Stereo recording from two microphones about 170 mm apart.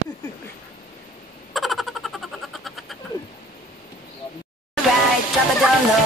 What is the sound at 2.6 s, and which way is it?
Frog, centre (ahead or behind).